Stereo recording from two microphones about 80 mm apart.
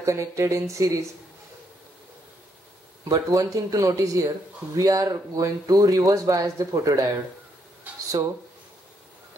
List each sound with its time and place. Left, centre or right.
0.0 s speech: right
3.1 s speech: right
7.9 s a sound: centre